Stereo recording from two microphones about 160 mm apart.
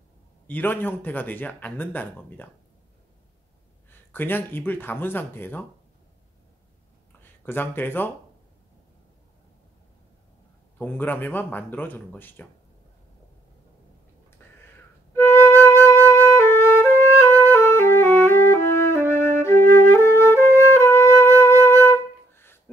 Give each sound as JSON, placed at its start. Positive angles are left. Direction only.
{"t": 0.5, "sound": "speech", "side_deg": 10}
{"t": 4.1, "sound": "speech", "side_deg": 10}
{"t": 7.4, "sound": "speech", "side_deg": 15}
{"t": 10.8, "sound": "speech", "side_deg": 10}
{"t": 14.4, "sound": "a sound", "side_deg": 15}
{"t": 15.1, "sound": "flute", "side_deg": 15}